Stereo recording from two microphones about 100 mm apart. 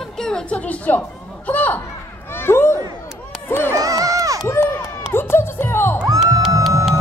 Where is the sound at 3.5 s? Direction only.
20° left (ahead or behind).